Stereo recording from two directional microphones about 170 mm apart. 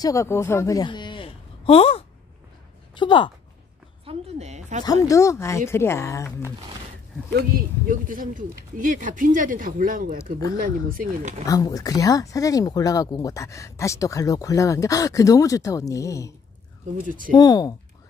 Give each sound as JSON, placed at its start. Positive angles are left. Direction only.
{"t": 0.0, "sound": "a woman's voice", "side_deg": 20}
{"t": 4.0, "sound": "a sound", "side_deg": -40}
{"t": 4.8, "sound": "speech", "side_deg": 20}
{"t": 7.3, "sound": "speech", "side_deg": -55}
{"t": 11.4, "sound": "speech", "side_deg": 20}
{"t": 17.0, "sound": "speech", "side_deg": -50}
{"t": 17.4, "sound": "speech", "side_deg": 25}